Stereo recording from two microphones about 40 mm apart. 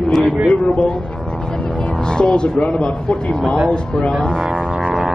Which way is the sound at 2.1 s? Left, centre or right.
Left.